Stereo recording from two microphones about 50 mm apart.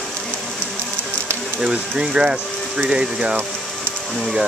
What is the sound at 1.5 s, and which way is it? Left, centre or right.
Speech, centre.